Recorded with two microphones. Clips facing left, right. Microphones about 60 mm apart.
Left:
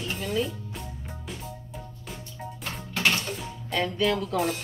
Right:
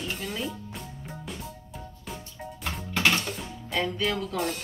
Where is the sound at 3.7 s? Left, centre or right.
Centre.